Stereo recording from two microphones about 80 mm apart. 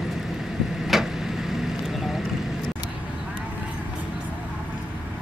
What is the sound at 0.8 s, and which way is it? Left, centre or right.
Vehicle, centre.